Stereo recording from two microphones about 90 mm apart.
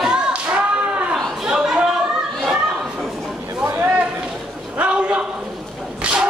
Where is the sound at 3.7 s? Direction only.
20° right (ahead or behind).